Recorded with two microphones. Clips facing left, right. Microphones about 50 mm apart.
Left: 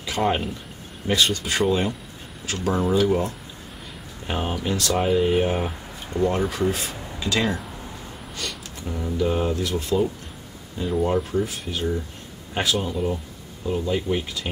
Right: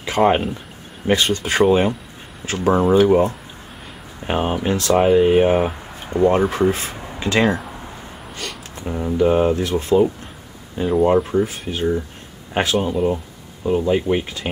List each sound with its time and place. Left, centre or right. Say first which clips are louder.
0.2 s speech: right 7 dB; centre
1.4 s speech: right 7 dB; centre
2.4 s speech: right 7 dB; right
7.6 s a sound: right 3 dB; right
8.7 s speech: right 7 dB; right
11.3 s speech: right 5 dB; right
11.7 s speech: right 6 dB; right